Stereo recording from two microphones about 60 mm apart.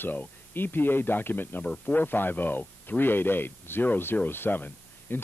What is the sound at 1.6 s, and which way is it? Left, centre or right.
Speech, left.